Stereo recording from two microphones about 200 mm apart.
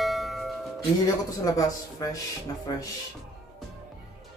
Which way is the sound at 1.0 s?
15° left (ahead or behind).